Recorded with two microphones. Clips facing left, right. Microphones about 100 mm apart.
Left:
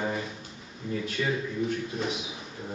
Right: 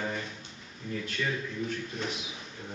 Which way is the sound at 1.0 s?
5° left (ahead or behind).